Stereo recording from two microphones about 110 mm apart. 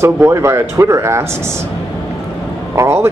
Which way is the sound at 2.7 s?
25° right (ahead or behind).